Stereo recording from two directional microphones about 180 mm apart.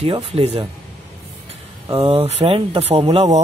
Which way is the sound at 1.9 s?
30° right (ahead or behind).